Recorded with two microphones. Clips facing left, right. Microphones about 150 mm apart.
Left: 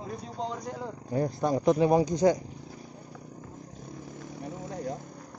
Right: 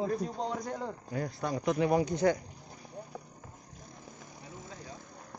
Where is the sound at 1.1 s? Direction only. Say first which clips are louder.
Left 8 dB; 25° left (ahead or behind).